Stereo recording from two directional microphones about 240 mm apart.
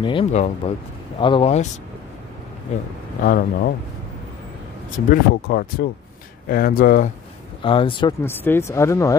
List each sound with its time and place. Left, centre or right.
0.0 s speech: left
3.2 s speech: left
4.9 s speech: left
7.6 s speech: left
8.2 s speech: centre